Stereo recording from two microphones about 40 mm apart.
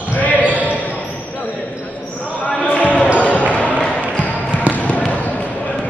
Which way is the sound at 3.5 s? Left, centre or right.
Left.